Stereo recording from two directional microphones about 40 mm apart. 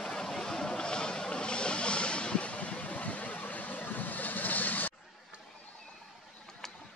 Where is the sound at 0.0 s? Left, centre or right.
Centre; by 4.9 s left.